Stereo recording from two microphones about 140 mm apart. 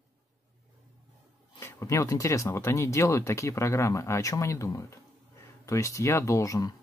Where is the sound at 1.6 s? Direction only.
20° left (ahead or behind).